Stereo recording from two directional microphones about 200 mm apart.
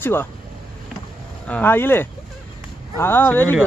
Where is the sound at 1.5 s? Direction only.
10° left (ahead or behind).